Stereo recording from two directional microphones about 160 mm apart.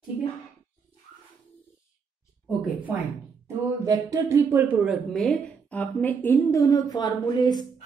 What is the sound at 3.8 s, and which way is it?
Speech, 20° right (ahead or behind).